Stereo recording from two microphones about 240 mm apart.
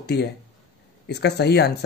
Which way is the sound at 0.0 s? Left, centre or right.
Left.